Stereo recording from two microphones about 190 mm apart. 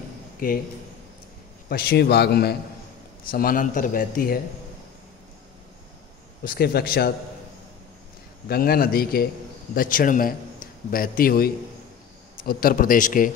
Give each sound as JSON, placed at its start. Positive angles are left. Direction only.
{"t": 0.4, "sound": "a man's voice", "side_deg": 50}
{"t": 1.7, "sound": "a man's voice", "side_deg": 55}
{"t": 6.4, "sound": "a man's voice", "side_deg": 50}
{"t": 8.5, "sound": "a man's voice", "side_deg": 55}